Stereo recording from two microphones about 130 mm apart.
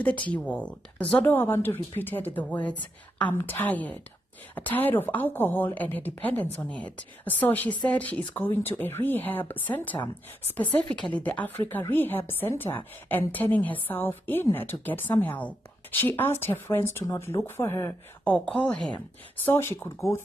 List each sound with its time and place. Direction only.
0.0 s a woman's voice: 10° left (ahead or behind)
11.0 s a woman's voice: 10° left (ahead or behind)
18.9 s speech: 15° left (ahead or behind)